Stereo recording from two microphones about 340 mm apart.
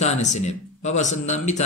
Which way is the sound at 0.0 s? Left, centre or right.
Centre.